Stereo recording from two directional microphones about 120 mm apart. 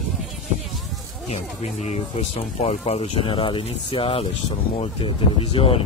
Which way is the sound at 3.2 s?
45° left (ahead or behind).